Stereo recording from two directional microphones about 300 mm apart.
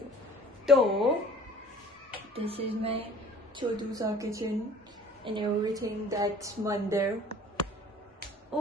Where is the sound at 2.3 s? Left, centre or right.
Centre.